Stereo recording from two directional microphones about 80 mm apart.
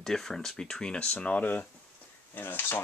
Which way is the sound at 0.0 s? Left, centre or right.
Centre.